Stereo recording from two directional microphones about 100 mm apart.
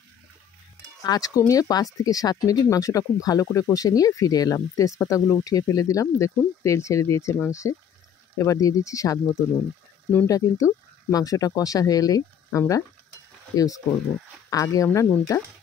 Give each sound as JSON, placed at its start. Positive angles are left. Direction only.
{"t": 1.0, "sound": "speech", "side_deg": 40}
{"t": 10.2, "sound": "speech", "side_deg": 35}